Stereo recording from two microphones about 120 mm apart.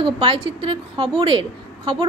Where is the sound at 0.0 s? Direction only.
45° right (ahead or behind).